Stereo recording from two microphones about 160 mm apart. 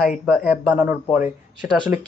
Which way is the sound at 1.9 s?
50° left (ahead or behind).